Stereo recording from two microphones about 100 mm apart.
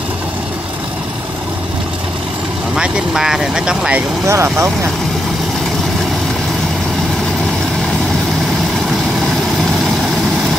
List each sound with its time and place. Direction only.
2.7 s speech: 5° right (ahead or behind)
4.3 s speech: 25° right (ahead or behind)